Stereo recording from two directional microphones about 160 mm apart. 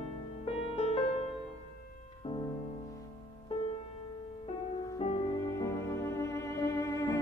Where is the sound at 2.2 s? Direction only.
30° left (ahead or behind).